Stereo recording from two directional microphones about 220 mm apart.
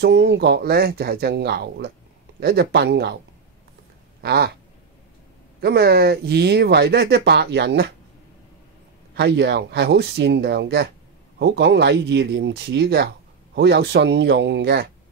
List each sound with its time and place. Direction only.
0.0 s speech: 50° right (ahead or behind)
4.2 s cat: 45° right (ahead or behind)
5.6 s speech: 45° right (ahead or behind)
9.1 s speech: 50° right (ahead or behind)